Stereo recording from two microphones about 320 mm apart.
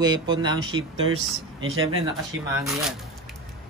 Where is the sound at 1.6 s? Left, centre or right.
Right.